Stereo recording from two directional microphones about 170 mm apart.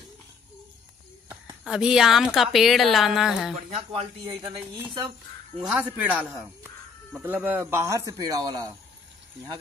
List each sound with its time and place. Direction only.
1.6 s a woman's voice: 5° right (ahead or behind)
3.9 s a man's voice: 30° right (ahead or behind)
5.7 s a man's voice: 10° right (ahead or behind)